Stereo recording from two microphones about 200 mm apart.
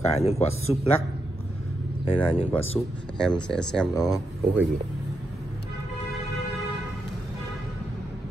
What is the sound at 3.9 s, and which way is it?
Speech, 20° left (ahead or behind).